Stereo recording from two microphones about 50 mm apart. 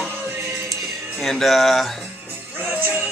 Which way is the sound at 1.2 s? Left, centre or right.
Centre.